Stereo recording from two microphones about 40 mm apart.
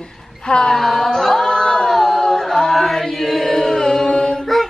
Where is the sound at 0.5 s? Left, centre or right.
Centre.